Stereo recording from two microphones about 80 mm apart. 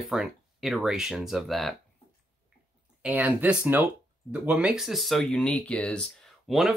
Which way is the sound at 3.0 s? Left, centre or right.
Centre.